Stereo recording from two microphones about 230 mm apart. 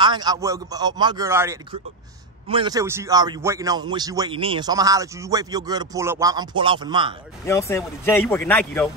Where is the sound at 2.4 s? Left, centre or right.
Right.